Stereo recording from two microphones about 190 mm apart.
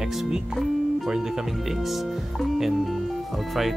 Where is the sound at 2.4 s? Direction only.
Centre (ahead or behind).